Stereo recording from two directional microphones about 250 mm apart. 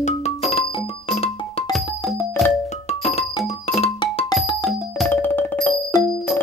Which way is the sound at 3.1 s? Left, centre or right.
Left.